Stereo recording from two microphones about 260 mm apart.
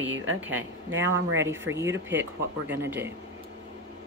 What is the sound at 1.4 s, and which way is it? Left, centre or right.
Speech, centre.